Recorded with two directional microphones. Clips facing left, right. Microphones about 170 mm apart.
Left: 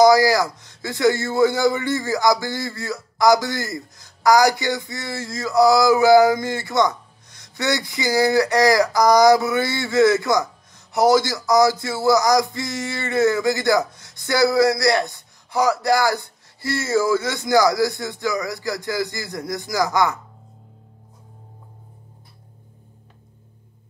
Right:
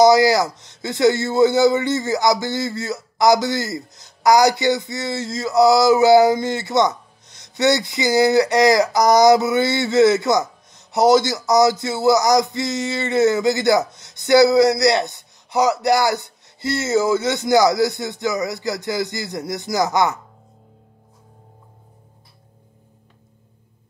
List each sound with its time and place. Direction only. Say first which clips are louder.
0.0 s a man's voice: right 1 dB; 20° right (ahead or behind)